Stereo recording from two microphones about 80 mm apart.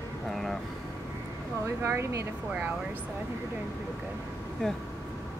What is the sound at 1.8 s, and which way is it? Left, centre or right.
Speech, right.